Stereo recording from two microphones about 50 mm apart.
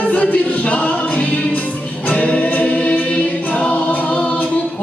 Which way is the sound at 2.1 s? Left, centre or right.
Left.